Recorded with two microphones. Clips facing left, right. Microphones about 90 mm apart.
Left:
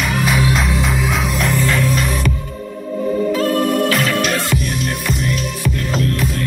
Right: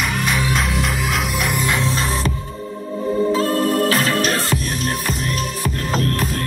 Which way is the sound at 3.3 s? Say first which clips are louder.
Left 2 dB; 30° right (ahead or behind).